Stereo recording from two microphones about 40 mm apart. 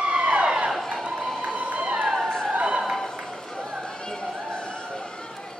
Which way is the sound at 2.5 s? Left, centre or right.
Right.